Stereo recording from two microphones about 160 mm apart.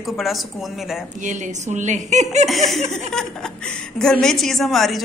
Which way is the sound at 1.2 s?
50° right (ahead or behind).